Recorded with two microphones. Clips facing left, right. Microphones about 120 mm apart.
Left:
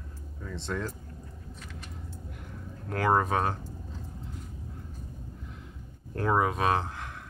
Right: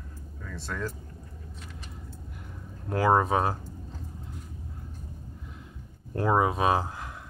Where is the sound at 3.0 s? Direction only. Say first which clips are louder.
Right 2 dB; 5° right (ahead or behind).